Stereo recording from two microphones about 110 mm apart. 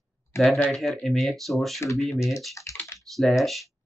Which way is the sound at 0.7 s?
Centre (ahead or behind).